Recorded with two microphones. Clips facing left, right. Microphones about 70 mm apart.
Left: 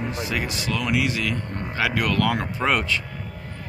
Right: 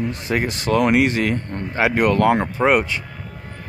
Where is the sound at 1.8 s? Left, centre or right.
Right.